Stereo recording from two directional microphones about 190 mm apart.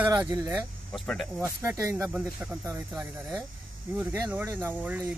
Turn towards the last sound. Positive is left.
turn(degrees=-10)  # may be behind; listen again after turning